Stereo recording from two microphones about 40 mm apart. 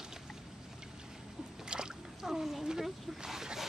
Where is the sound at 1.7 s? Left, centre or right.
Centre.